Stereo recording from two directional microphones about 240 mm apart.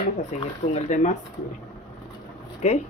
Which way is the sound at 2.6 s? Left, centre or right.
Left.